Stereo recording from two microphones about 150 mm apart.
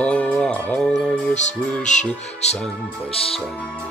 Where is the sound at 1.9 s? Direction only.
55° left (ahead or behind).